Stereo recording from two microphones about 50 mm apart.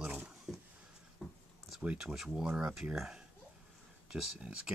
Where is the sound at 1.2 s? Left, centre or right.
Left.